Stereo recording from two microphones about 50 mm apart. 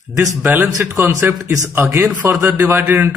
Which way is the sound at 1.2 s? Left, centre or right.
Right.